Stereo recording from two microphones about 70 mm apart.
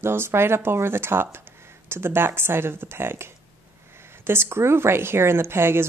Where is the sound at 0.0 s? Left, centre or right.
Right.